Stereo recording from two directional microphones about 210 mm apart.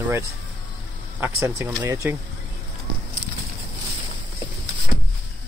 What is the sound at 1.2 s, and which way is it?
Speech, 15° right (ahead or behind).